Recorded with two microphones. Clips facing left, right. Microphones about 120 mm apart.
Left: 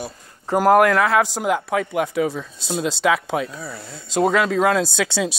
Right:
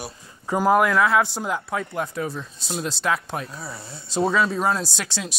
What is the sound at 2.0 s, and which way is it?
Speech, 90° left.